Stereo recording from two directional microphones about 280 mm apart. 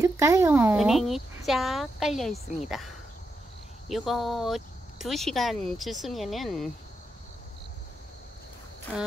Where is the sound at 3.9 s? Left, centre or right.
Centre.